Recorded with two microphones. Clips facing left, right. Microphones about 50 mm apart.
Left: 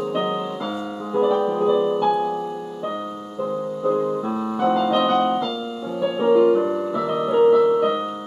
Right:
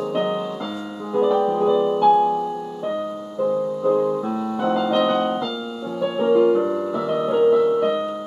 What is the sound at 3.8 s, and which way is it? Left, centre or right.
Music, centre.